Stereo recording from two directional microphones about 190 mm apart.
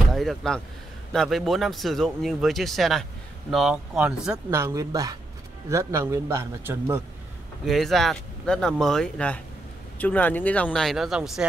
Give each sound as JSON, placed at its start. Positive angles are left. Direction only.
{"t": 0.1, "sound": "a sound", "side_deg": 0}
{"t": 1.1, "sound": "speech", "side_deg": 0}
{"t": 7.6, "sound": "speech", "side_deg": 0}